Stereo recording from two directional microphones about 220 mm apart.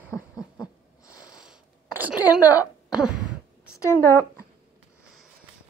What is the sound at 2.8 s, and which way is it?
Throat clearing, 5° right (ahead or behind).